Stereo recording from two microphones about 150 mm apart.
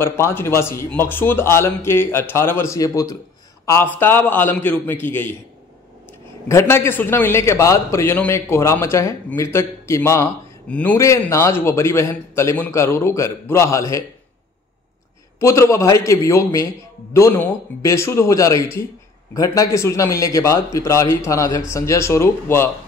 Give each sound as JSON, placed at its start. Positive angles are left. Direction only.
{"t": 0.0, "sound": "a man's voice", "side_deg": 15}
{"t": 6.5, "sound": "a man's voice", "side_deg": 15}
{"t": 15.3, "sound": "a man's voice", "side_deg": 20}